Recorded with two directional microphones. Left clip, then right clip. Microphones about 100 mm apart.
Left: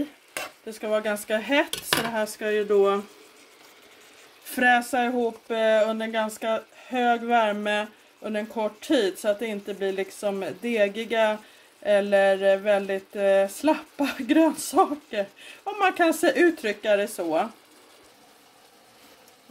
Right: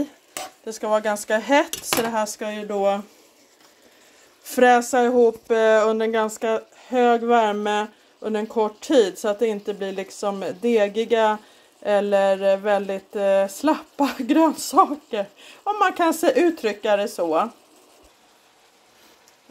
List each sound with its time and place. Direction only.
0.7 s speech: 25° right (ahead or behind)
4.5 s speech: 35° right (ahead or behind)
5.9 s speech: 50° right (ahead or behind)
11.8 s a sound: 60° right (ahead or behind); by 17.5 s 45° right (ahead or behind)